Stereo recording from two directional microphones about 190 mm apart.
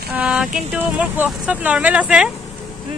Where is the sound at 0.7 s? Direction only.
5° right (ahead or behind).